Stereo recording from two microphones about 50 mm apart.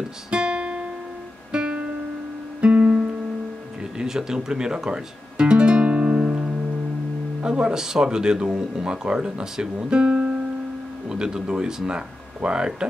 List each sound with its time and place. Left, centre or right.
0.3 s music: right
1.5 s guitar: centre
2.6 s guitar: right
4.0 s music: centre; by 6.5 s right
7.4 s speech: centre